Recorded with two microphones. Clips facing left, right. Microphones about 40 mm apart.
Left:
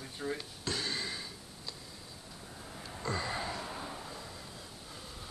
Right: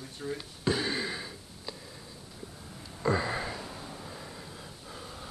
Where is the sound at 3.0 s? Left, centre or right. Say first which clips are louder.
Right 7 dB; centre.